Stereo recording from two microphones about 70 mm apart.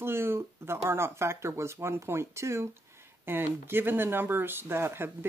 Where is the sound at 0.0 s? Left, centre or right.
Right.